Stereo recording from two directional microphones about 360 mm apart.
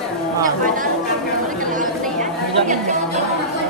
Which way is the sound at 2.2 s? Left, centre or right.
Right.